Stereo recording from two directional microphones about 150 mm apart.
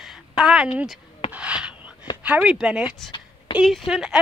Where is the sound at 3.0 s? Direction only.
30° left (ahead or behind).